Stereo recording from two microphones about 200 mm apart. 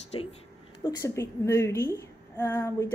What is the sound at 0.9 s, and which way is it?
A woman's voice, 15° left (ahead or behind).